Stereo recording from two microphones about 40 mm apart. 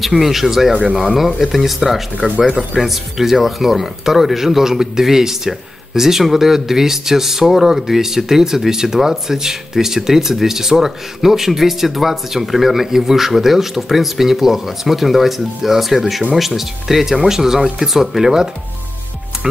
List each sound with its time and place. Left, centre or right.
0.0 s speech: centre
2.1 s speech: right
2.7 s speech: centre